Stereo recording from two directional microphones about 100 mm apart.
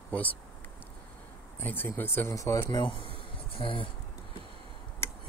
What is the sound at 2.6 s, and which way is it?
Speech, 50° left (ahead or behind).